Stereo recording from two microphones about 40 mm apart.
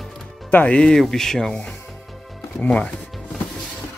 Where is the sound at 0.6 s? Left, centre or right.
Left.